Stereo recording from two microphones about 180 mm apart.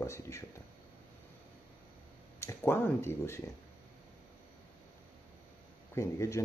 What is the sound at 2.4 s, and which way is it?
Speech, 15° left (ahead or behind).